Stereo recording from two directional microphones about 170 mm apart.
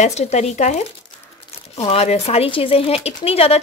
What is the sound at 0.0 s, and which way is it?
Speech, 40° left (ahead or behind).